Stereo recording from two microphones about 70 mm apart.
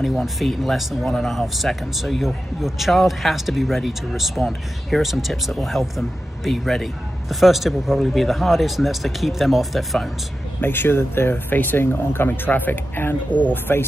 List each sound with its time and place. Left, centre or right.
0.0 s speech: centre
10.6 s speech: left